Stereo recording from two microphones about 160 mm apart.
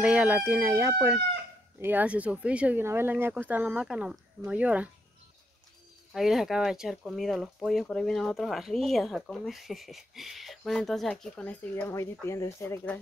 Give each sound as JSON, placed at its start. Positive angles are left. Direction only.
{"t": 0.0, "sound": "speech", "side_deg": -5}
{"t": 6.1, "sound": "speech", "side_deg": 0}